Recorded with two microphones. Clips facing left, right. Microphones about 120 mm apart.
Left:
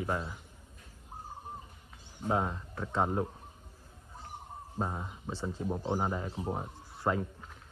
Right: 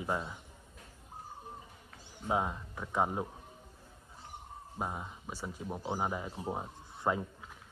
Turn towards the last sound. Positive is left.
turn(degrees=-15)  # may be behind; listen again after turning